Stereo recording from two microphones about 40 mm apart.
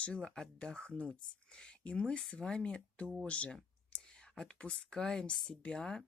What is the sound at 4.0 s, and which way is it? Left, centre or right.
Whispering, centre.